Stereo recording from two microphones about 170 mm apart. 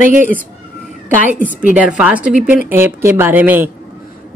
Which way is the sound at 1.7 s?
10° right (ahead or behind).